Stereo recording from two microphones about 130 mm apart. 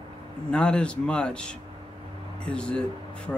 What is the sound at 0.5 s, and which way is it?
Speech, 5° left (ahead or behind).